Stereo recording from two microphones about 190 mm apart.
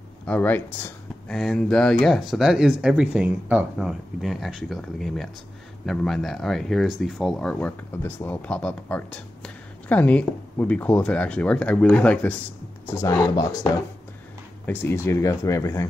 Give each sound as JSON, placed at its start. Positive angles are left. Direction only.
{"t": 0.3, "sound": "speech", "side_deg": 10}
{"t": 14.7, "sound": "speech", "side_deg": 10}